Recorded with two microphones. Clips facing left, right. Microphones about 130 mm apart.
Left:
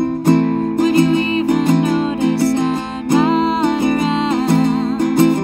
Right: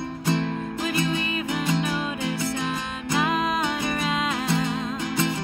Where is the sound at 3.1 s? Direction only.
35° left (ahead or behind).